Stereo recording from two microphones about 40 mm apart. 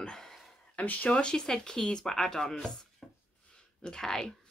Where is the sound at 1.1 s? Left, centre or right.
Left.